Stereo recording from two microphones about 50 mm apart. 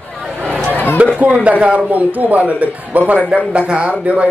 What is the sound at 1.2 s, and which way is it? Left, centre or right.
A man's voice, right.